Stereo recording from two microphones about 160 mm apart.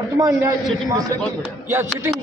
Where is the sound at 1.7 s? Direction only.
15° right (ahead or behind).